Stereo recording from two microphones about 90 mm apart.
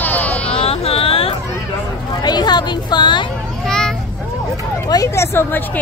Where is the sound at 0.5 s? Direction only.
90° left.